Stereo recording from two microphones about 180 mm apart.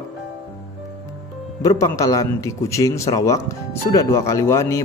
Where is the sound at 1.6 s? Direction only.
20° left (ahead or behind).